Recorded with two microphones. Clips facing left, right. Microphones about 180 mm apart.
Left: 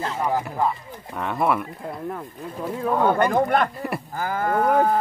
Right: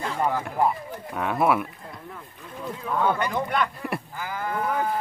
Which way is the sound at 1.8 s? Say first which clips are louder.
Left 10 dB; 55° left (ahead or behind).